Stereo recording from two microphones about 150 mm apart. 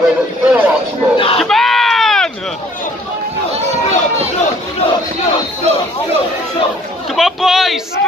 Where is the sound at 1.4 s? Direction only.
Centre (ahead or behind).